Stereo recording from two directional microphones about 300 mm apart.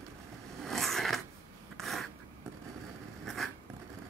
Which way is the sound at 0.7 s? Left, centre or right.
Centre.